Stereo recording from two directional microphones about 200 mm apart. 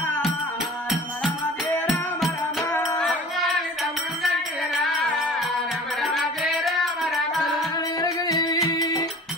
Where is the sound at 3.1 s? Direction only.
Centre (ahead or behind).